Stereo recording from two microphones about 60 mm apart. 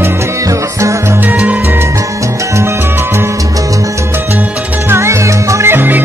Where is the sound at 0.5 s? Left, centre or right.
Right.